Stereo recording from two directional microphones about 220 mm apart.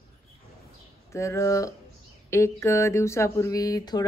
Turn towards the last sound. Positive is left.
turn(degrees=15)  # may be behind; listen again after turning